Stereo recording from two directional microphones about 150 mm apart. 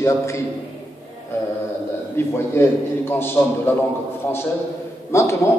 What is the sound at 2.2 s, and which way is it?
Speech, 15° left (ahead or behind).